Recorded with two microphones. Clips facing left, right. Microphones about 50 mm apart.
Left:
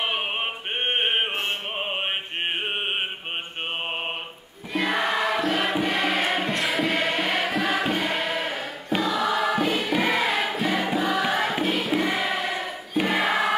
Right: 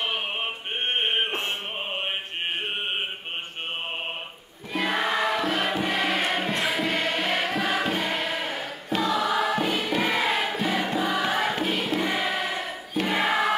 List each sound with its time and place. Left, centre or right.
0.8 s a sound: centre
4.7 s music: centre
12.9 s choir: centre